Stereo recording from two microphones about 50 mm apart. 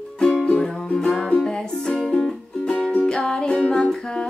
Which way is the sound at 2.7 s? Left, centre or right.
Centre.